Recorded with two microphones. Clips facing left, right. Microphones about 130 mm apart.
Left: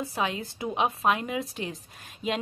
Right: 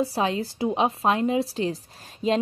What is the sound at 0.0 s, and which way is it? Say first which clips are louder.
A woman's voice: right 6 dB; 35° right (ahead or behind).